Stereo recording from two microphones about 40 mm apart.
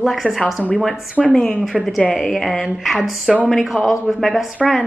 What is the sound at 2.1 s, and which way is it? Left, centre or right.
A woman's voice, centre.